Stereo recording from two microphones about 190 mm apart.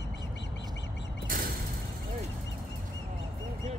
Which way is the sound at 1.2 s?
45° right (ahead or behind).